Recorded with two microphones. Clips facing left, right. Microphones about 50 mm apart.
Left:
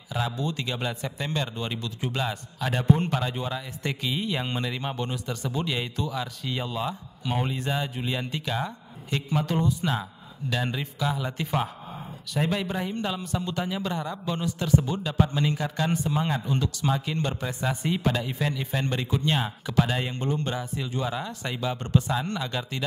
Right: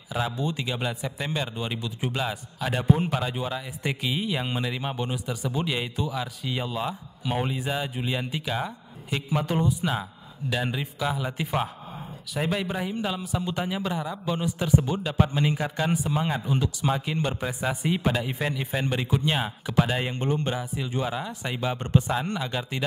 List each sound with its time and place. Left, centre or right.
0.1 s a man's voice: centre
13.5 s a man's voice: centre
20.2 s a man's voice: right